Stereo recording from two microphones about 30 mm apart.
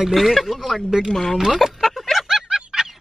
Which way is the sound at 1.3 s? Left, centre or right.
Centre.